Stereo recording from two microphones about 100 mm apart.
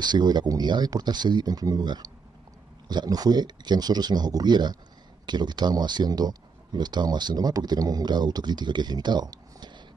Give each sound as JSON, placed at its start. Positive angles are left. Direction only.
{"t": 0.0, "sound": "speech", "side_deg": -45}